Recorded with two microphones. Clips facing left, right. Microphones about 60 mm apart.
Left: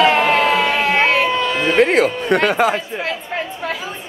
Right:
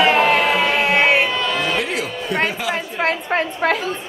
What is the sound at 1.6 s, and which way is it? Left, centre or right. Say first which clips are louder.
Speech: left 8 dB; left.